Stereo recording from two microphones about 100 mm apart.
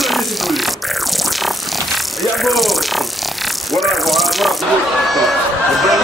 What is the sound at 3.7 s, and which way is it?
Music, centre (ahead or behind).